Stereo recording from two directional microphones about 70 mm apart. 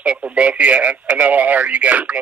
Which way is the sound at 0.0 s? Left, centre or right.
Centre.